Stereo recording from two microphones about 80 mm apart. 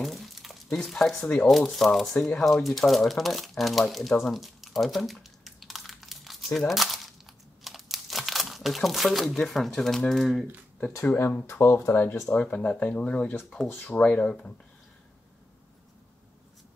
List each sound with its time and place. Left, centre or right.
0.0 s a sound: centre
1.5 s speech: centre
6.7 s crumpling: centre
9.4 s speech: centre
11.1 s speech: left
12.4 s speech: centre